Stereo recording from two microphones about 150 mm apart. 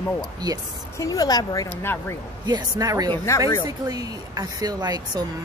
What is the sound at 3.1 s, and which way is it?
Speech, 15° left (ahead or behind).